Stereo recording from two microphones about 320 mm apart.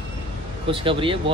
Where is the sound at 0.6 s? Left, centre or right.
Centre.